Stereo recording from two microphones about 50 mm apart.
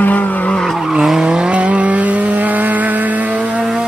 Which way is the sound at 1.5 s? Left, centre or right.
Right.